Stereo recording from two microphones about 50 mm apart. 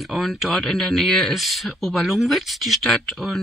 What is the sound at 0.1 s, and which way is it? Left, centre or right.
Speech, centre.